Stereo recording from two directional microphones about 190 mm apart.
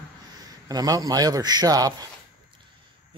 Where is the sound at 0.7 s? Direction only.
20° right (ahead or behind).